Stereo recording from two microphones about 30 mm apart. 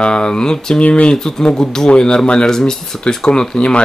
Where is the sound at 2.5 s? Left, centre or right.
Centre.